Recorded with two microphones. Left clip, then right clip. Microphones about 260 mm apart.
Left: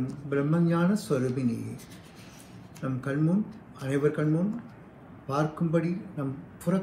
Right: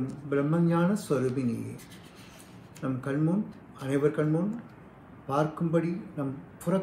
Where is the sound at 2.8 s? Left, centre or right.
Centre.